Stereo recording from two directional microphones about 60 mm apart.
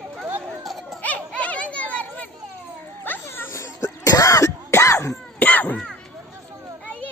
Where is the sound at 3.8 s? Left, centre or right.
Left.